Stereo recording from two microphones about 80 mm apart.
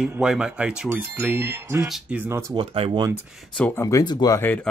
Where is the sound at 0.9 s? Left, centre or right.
Right.